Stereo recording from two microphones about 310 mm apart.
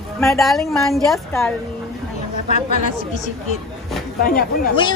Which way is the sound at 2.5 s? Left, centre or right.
Left.